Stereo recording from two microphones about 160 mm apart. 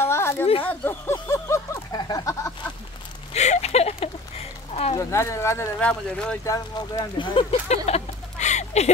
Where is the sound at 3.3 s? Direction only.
45° left (ahead or behind).